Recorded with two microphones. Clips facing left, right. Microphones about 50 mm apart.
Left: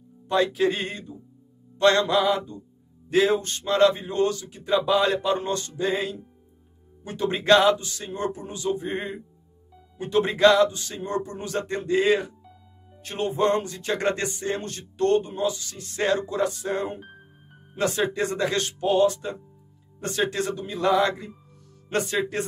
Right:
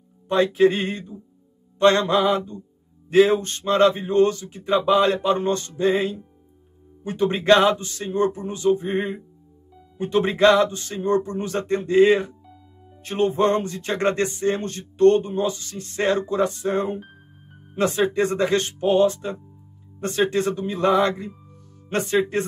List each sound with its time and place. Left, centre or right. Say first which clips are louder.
0.3 s speech: right 4 dB; right
13.0 s speech: right 4 dB; right